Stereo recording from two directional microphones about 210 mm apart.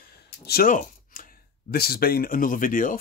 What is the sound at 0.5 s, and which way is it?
Speech, 40° left (ahead or behind).